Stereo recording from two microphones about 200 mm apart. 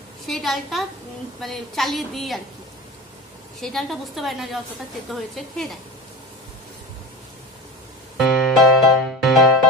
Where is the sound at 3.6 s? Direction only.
Centre (ahead or behind).